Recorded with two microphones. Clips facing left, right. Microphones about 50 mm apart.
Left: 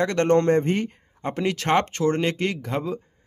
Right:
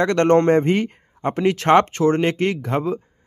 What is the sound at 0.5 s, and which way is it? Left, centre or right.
Speech, right.